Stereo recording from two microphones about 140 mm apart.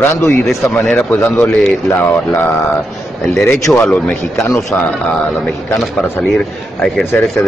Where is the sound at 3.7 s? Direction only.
10° left (ahead or behind).